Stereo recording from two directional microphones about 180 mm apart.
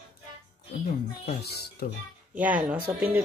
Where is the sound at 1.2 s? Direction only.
60° left (ahead or behind).